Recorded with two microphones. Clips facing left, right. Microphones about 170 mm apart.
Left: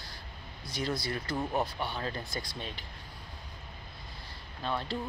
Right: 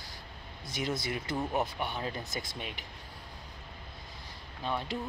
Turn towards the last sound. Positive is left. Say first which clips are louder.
# even
turn(degrees=-15)  # may be behind; listen again after turning